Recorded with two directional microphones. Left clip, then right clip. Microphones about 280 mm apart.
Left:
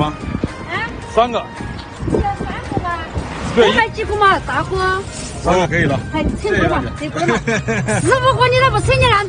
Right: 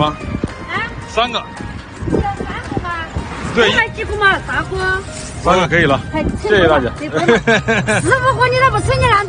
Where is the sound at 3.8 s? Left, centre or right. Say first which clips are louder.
Left 1 dB; left.